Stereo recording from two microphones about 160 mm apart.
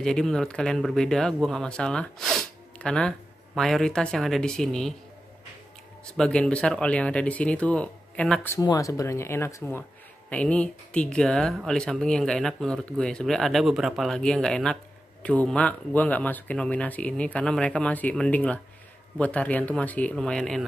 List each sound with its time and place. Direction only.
0.0 s speech: 5° left (ahead or behind)
6.1 s speech: 5° left (ahead or behind)
8.5 s speech: 20° left (ahead or behind); by 20.6 s 5° left (ahead or behind)